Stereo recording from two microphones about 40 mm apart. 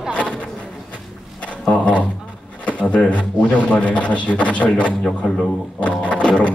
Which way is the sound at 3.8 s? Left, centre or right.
Left.